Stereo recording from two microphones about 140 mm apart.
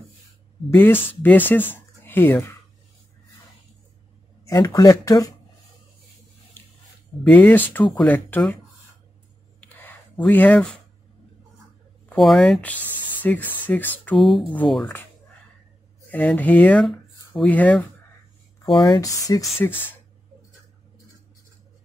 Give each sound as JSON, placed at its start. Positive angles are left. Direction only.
{"t": 0.7, "sound": "speech", "side_deg": 15}
{"t": 4.5, "sound": "speech", "side_deg": 25}
{"t": 7.2, "sound": "speech", "side_deg": 10}
{"t": 9.6, "sound": "a sound", "side_deg": 15}
{"t": 12.1, "sound": "speech", "side_deg": 5}
{"t": 14.1, "sound": "speech", "side_deg": 0}
{"t": 16.1, "sound": "speech", "side_deg": 10}
{"t": 18.8, "sound": "speech", "side_deg": 30}